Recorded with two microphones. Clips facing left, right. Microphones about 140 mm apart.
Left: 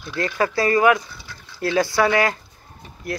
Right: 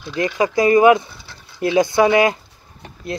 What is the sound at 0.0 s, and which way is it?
Speech, 15° right (ahead or behind).